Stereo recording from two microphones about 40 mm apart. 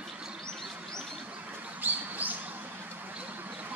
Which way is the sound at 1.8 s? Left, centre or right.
Right.